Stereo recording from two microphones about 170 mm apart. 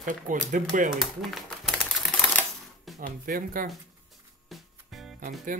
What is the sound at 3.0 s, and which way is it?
Speech, 55° right (ahead or behind).